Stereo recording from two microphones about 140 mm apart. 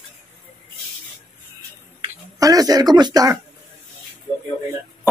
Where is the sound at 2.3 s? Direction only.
25° right (ahead or behind).